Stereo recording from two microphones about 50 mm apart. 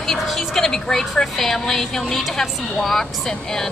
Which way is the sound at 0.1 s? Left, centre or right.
Centre.